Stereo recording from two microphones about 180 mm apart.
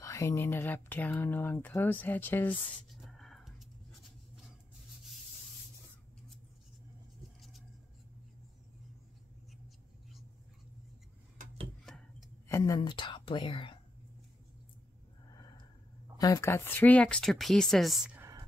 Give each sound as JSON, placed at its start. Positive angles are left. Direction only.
{"t": 0.0, "sound": "speech", "side_deg": 15}
{"t": 2.9, "sound": "a sound", "side_deg": 0}
{"t": 11.8, "sound": "tick-tock", "side_deg": 0}
{"t": 12.4, "sound": "a woman's voice", "side_deg": 15}
{"t": 16.2, "sound": "speech", "side_deg": 20}